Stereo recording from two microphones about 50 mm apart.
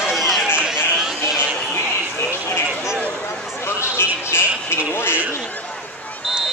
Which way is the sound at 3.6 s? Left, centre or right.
Left.